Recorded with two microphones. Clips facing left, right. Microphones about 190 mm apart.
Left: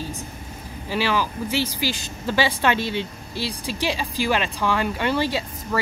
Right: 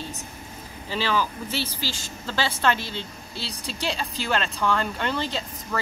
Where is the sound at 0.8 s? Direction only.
10° left (ahead or behind).